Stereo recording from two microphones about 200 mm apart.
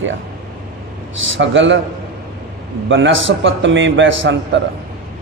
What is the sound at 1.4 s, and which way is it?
Speech, 65° right (ahead or behind).